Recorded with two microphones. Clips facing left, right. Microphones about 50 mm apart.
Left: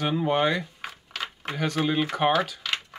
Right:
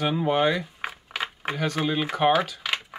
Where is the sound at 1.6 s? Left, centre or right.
Centre.